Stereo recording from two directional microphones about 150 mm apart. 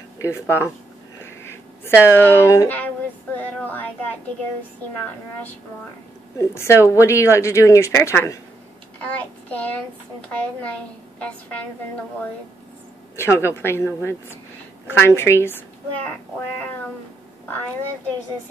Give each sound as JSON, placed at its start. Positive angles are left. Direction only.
{"t": 0.2, "sound": "a woman's voice", "side_deg": 15}
{"t": 1.2, "sound": "a sound", "side_deg": 15}
{"t": 3.3, "sound": "a woman's voice", "side_deg": 10}
{"t": 6.3, "sound": "a woman's voice", "side_deg": 15}
{"t": 9.0, "sound": "child singing", "side_deg": 10}
{"t": 10.3, "sound": "a woman's voice", "side_deg": 10}
{"t": 13.1, "sound": "a woman's voice", "side_deg": 15}
{"t": 14.9, "sound": "a woman's voice", "side_deg": 15}